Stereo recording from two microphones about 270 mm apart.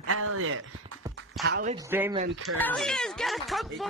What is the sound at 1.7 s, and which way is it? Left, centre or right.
Speech, centre.